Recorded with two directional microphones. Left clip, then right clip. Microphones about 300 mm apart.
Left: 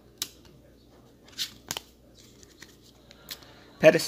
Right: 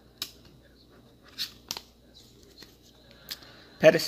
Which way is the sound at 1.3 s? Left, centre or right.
Centre.